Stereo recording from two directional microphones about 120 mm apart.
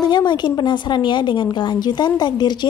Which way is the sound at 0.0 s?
35° left (ahead or behind).